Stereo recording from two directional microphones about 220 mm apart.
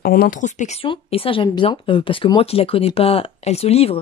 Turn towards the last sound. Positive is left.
turn(degrees=25)  # may be behind; listen again after turning